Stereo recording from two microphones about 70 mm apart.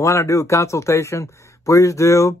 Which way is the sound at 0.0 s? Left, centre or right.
Left.